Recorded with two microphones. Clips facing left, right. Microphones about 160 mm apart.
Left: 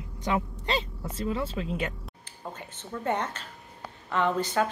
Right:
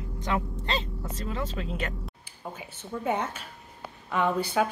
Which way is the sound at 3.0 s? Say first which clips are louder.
Even; 10° right (ahead or behind).